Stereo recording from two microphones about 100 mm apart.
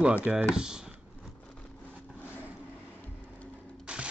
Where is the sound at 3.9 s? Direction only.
10° right (ahead or behind).